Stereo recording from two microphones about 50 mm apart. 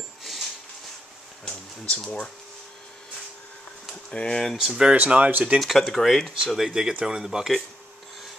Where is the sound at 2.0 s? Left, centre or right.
Left.